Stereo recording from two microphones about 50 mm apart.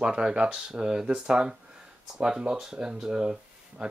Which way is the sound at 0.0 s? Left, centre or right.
Centre.